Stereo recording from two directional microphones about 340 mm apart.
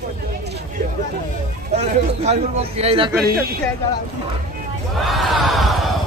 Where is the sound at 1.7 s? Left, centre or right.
Centre.